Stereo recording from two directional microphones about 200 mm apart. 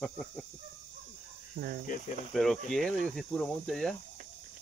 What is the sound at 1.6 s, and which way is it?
Speech, 45° right (ahead or behind).